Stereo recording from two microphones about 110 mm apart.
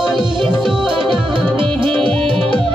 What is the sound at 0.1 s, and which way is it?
Music, 50° right (ahead or behind).